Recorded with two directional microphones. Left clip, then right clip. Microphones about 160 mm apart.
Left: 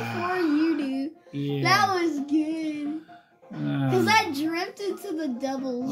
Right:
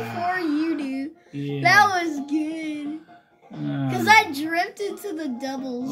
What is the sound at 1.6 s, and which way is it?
Speech, 55° right (ahead or behind).